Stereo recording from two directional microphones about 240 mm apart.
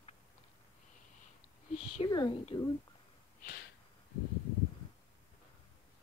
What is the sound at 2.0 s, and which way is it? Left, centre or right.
Speech, centre.